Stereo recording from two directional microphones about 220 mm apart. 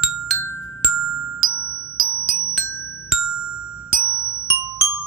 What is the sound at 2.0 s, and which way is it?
Marimba, 20° right (ahead or behind).